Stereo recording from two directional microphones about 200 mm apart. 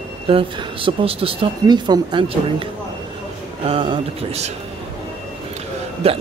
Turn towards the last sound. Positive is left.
turn(degrees=-30)  # may be behind; listen again after turning